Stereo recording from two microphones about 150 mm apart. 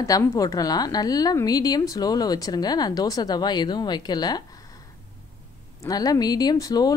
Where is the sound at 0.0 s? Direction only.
20° left (ahead or behind).